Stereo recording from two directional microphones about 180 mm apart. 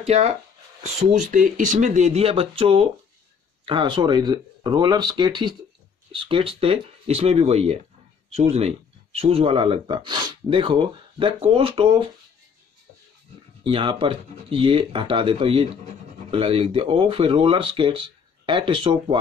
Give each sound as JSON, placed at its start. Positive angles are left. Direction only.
{"t": 0.0, "sound": "speech", "side_deg": -35}
{"t": 13.7, "sound": "speech", "side_deg": -30}